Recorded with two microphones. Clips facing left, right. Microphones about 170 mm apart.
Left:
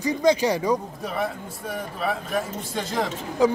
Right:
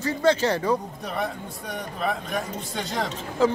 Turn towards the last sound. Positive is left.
turn(degrees=15)  # may be behind; listen again after turning